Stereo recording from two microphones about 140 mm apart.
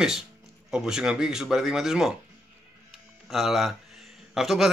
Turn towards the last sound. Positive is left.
turn(degrees=0)  # may be behind; listen again after turning